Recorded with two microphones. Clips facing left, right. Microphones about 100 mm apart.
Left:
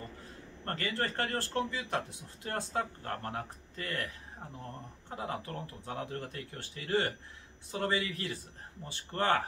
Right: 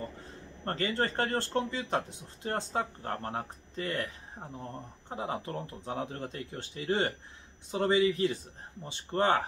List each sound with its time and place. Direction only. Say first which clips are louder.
0.7 s a man's voice: right 4 dB; 25° right (ahead or behind)
5.1 s a man's voice: right 3 dB; 20° right (ahead or behind)